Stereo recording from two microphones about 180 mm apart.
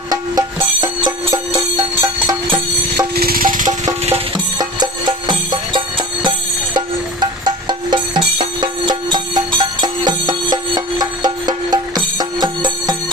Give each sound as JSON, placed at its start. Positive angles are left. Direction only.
{"t": 0.1, "sound": "music", "side_deg": -20}
{"t": 3.2, "sound": "music", "side_deg": -55}
{"t": 4.6, "sound": "music", "side_deg": -25}